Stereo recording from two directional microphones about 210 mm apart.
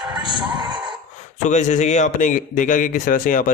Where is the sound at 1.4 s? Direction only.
35° left (ahead or behind).